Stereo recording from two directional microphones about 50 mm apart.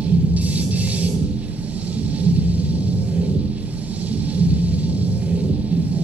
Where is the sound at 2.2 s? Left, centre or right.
Right.